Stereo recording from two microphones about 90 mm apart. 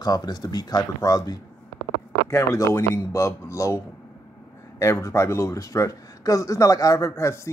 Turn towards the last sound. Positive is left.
turn(degrees=35)  # may be behind; listen again after turning